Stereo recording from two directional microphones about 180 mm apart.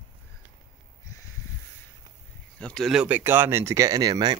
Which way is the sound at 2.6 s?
5° left (ahead or behind).